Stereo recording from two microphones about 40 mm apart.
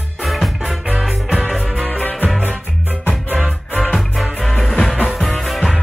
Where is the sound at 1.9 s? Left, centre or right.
Left.